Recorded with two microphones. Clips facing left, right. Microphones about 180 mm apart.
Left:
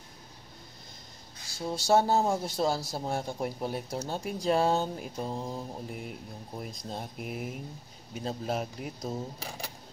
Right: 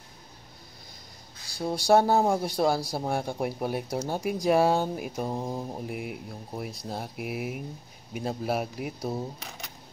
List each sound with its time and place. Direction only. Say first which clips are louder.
1.6 s speech: right 3 dB; 15° right (ahead or behind)
9.4 s speech: left 3 dB; 30° left (ahead or behind)